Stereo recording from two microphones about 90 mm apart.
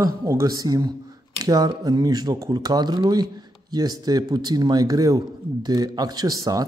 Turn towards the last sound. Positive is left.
turn(degrees=-45)  # may be behind; listen again after turning